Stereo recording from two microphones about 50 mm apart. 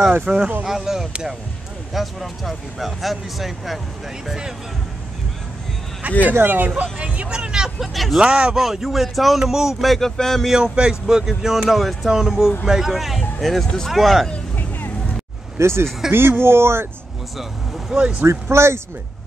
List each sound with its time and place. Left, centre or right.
0.3 s speech: right
0.7 s speech: centre
6.3 s speech: right
6.8 s speech: right; by 8.2 s centre
8.2 s speech: centre
8.5 s speech: centre
10.6 s speech: centre
15.5 s speech: right
17.4 s speech: centre
18.2 s speech: right